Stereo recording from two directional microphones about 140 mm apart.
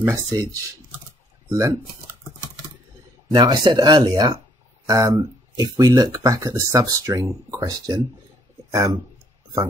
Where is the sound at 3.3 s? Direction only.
35° right (ahead or behind).